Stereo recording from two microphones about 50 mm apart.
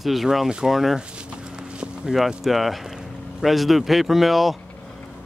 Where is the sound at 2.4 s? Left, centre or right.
Centre.